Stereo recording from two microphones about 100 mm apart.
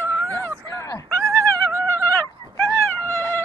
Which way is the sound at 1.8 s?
20° left (ahead or behind).